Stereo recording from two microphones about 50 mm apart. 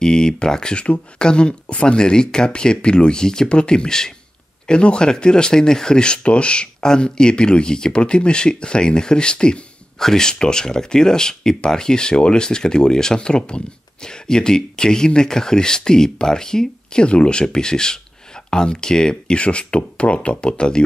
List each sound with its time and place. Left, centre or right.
0.0 s speech: centre